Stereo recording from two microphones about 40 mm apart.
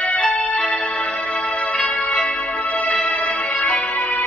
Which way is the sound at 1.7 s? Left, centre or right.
Left.